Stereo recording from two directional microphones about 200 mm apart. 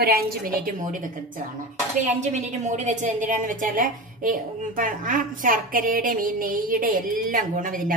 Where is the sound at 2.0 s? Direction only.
35° right (ahead or behind).